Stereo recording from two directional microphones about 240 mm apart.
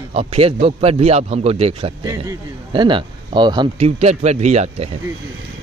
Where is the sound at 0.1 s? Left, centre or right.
Right.